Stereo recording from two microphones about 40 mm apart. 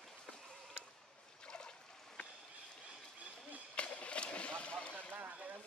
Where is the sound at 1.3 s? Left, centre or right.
Centre.